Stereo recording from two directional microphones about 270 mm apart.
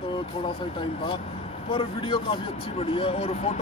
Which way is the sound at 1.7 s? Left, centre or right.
Centre.